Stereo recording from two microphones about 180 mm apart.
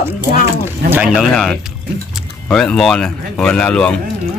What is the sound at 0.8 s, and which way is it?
Speech, 65° right (ahead or behind).